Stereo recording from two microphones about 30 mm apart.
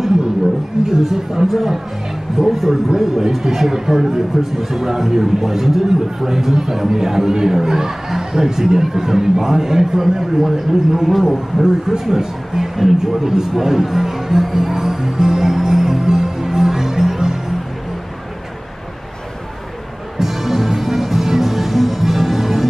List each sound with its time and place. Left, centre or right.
1.0 s speech: centre
11.2 s a man's voice: centre
13.2 s speech: centre
14.5 s music: centre
20.2 s music: centre